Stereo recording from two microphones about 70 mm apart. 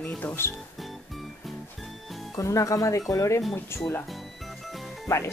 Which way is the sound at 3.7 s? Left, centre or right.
Left.